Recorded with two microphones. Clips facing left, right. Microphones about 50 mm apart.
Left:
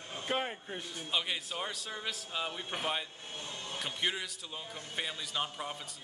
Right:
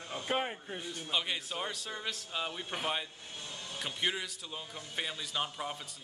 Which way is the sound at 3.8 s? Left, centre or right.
Centre.